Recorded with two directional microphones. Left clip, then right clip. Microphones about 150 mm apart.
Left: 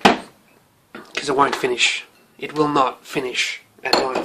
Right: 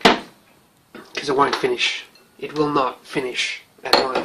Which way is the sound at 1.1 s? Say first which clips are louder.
Left 1 dB; centre (ahead or behind).